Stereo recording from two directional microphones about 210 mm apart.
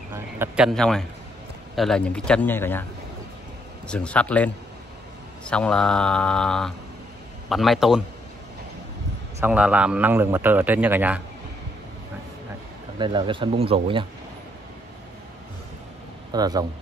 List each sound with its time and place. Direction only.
0.1 s a sound: 10° right (ahead or behind)
0.7 s speech: centre (ahead or behind)
3.8 s speech: 5° left (ahead or behind)
9.4 s a man's voice: 5° right (ahead or behind)
13.0 s speech: 25° right (ahead or behind)
16.3 s speech: 20° right (ahead or behind)